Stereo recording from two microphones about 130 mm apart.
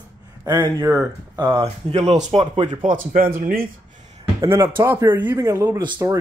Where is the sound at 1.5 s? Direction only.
50° right (ahead or behind).